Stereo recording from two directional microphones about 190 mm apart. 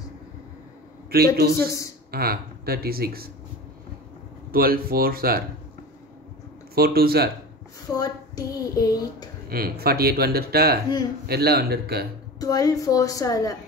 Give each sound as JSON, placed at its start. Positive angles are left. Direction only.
{"t": 1.1, "sound": "speech", "side_deg": -55}
{"t": 4.5, "sound": "speech", "side_deg": -50}
{"t": 6.7, "sound": "speech", "side_deg": -55}
{"t": 7.9, "sound": "speech", "side_deg": 20}
{"t": 9.5, "sound": "speech", "side_deg": -55}
{"t": 12.4, "sound": "speech", "side_deg": 20}